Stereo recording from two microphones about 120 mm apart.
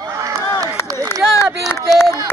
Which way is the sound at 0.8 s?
20° left (ahead or behind).